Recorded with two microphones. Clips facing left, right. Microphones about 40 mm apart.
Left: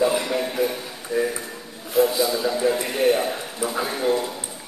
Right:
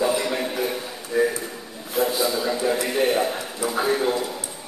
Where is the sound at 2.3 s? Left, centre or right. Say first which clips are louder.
Left 1 dB; centre.